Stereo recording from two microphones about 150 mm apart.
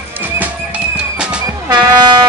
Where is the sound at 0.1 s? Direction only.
10° right (ahead or behind).